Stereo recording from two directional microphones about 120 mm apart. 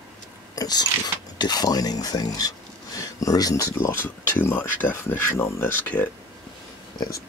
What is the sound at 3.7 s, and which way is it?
Speech, 20° left (ahead or behind).